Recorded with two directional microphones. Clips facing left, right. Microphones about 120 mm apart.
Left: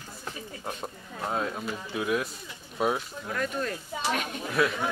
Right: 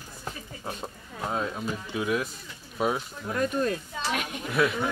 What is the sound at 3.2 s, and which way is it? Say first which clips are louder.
Speech: right 6 dB; 25° right (ahead or behind).